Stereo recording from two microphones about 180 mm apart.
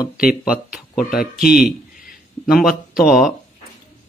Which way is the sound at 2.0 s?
55° left (ahead or behind).